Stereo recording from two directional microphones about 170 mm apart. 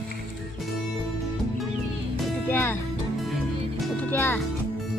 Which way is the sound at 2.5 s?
10° left (ahead or behind).